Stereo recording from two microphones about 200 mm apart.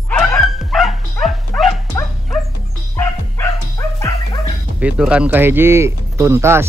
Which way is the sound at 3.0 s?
15° left (ahead or behind).